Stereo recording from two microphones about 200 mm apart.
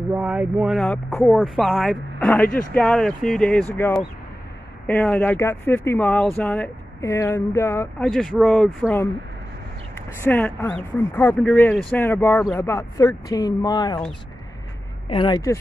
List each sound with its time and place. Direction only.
0.1 s speech: 10° right (ahead or behind); by 7.9 s 15° left (ahead or behind)
8.0 s speech: centre (ahead or behind)
9.9 s speech: 10° left (ahead or behind)
15.0 s speech: 25° left (ahead or behind)